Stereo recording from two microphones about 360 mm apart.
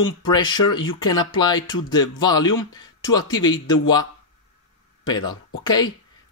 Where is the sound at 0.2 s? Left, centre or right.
Centre.